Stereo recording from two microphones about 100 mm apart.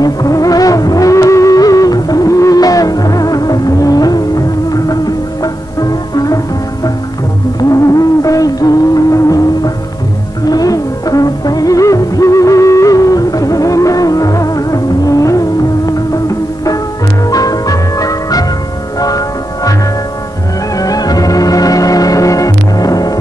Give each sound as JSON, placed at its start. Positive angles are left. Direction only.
{"t": 0.0, "sound": "music", "side_deg": 35}
{"t": 10.5, "sound": "music", "side_deg": 40}
{"t": 20.7, "sound": "music", "side_deg": 40}